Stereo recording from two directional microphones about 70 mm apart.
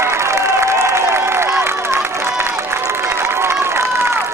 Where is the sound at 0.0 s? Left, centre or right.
Right.